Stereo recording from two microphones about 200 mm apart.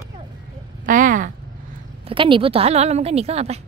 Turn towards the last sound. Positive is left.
turn(degrees=-30)  # may be behind; listen again after turning